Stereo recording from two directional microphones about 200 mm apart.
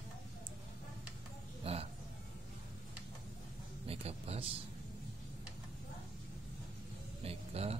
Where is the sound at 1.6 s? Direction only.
30° right (ahead or behind).